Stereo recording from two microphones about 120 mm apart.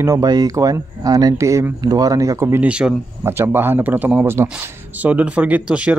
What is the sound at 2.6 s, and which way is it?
Speech, 10° right (ahead or behind).